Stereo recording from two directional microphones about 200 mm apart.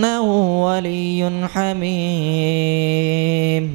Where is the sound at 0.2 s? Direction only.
40° right (ahead or behind).